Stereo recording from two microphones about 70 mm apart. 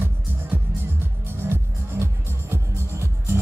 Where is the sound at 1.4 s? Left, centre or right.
Right.